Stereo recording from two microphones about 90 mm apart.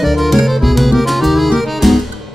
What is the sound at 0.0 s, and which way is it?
Music, centre (ahead or behind).